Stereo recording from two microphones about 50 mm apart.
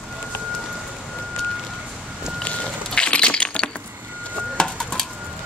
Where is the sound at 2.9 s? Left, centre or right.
Centre.